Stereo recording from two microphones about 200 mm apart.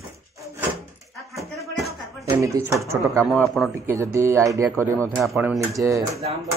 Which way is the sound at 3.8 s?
10° right (ahead or behind).